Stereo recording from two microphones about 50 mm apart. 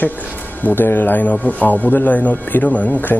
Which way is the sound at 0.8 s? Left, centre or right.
Left.